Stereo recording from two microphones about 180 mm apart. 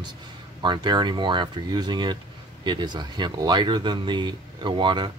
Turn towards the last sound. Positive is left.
turn(degrees=-25)  # may be behind; listen again after turning